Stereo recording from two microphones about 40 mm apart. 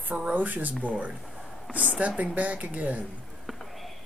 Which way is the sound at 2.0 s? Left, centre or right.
Right.